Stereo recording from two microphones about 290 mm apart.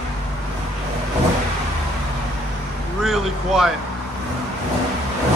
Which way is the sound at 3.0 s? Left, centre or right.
Centre.